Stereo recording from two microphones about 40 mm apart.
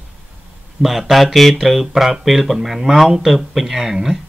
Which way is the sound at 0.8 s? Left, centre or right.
Centre.